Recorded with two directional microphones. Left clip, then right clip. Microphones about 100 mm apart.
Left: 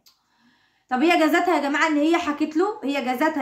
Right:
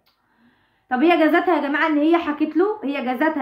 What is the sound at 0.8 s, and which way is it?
A woman's voice, 25° left (ahead or behind).